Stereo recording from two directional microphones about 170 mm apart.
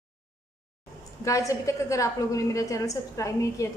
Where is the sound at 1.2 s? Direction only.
20° left (ahead or behind).